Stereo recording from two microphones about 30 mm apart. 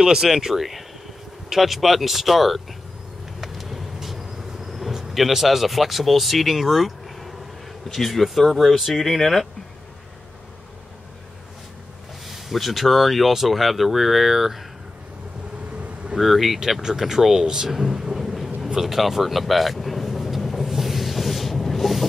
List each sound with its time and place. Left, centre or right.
0.0 s speech: centre
3.3 s vehicle: centre
5.1 s speech: centre
9.0 s speech: centre
12.3 s speech: centre
16.2 s speech: centre
16.8 s speech: centre
17.6 s thunder: centre
18.7 s speech: centre
18.9 s vehicle: centre